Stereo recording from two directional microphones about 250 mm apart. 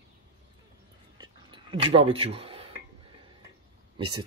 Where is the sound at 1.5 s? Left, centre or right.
Right.